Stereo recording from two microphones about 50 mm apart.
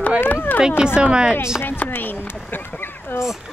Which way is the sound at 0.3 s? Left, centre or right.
Left.